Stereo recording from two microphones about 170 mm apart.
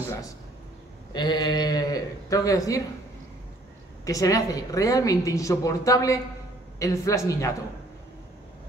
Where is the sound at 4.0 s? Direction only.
20° left (ahead or behind).